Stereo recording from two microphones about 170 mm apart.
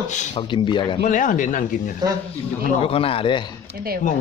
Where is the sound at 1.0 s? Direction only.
50° left (ahead or behind).